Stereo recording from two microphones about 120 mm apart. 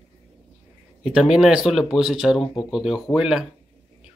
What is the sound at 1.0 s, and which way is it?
Speech, 5° right (ahead or behind).